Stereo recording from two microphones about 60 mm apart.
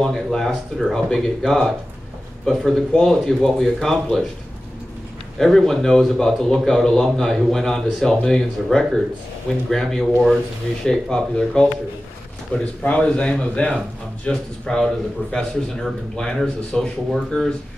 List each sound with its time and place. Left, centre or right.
0.0 s speech: centre
5.4 s speech: centre
12.5 s a man's voice: left